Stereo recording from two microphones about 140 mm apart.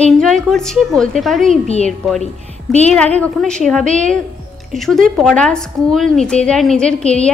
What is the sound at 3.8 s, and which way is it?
Speech, 60° right (ahead or behind).